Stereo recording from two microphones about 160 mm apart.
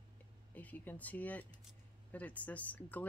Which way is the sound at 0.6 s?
10° left (ahead or behind).